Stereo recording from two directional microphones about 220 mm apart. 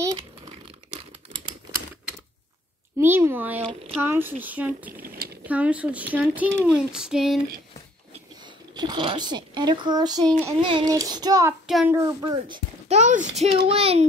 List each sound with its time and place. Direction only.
3.0 s a sound: 10° right (ahead or behind)
4.0 s speech: 10° right (ahead or behind)
5.0 s a sound: 45° right (ahead or behind)
5.5 s speech: 5° right (ahead or behind)
6.6 s child singing: 5° right (ahead or behind)
8.7 s a child's voice: 20° right (ahead or behind)
11.6 s speech: 5° right (ahead or behind)
12.8 s a child's voice: 30° right (ahead or behind)